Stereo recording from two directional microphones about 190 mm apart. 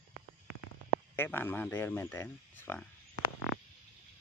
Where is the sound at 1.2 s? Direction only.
10° left (ahead or behind).